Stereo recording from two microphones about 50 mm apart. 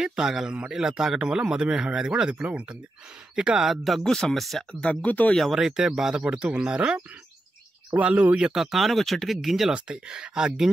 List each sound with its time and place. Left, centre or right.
0.0 s a man's voice: centre
3.6 s speech: centre
4.0 s speech: centre
4.8 s speech: left
5.5 s a man's voice: centre
8.0 s speech: right
8.4 s a man's voice: centre
8.7 s speech: centre
9.8 s a man's voice: right